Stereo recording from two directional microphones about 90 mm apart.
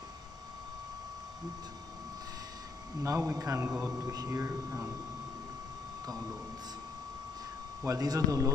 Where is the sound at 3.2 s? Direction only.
35° right (ahead or behind).